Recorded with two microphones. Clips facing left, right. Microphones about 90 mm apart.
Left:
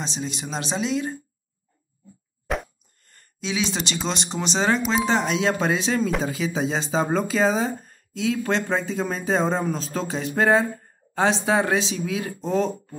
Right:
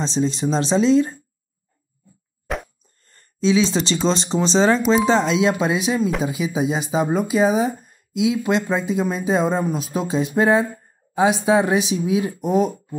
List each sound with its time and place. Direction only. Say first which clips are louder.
0.0 s speech: right 10 dB; 30° right (ahead or behind)
2.4 s plop: even; centre (ahead or behind)
3.3 s speech: right 9 dB; 25° right (ahead or behind)
4.6 s speech: right 3 dB; centre (ahead or behind)
5.0 s speech: right 5 dB; 25° right (ahead or behind)
5.9 s speech: right 2 dB; 5° right (ahead or behind)
6.2 s speech: right 3 dB; 15° right (ahead or behind)